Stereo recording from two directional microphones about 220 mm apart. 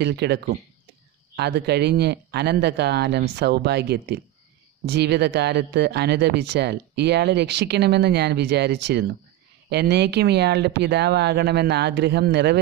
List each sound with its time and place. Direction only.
0.0 s speech: 50° right (ahead or behind)